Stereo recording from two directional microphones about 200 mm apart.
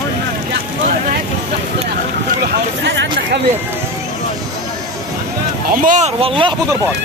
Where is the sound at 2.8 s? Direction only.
60° right (ahead or behind).